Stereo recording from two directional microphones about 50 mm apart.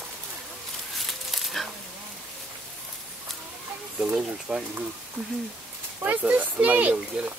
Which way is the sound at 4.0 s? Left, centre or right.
Right.